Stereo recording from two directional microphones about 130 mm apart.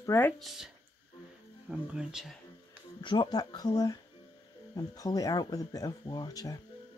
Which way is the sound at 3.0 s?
35° left (ahead or behind).